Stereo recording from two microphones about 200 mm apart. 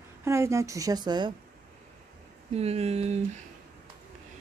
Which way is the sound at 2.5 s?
30° right (ahead or behind).